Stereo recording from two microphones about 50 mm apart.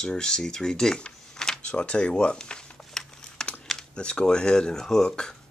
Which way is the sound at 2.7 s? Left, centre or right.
Centre.